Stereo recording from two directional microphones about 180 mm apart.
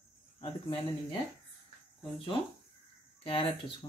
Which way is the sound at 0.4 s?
30° left (ahead or behind).